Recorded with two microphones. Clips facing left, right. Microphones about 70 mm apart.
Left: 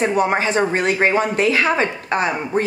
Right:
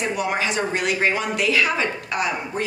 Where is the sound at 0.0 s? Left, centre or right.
Left.